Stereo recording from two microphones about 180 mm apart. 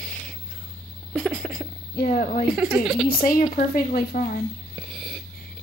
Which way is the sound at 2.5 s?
5° right (ahead or behind).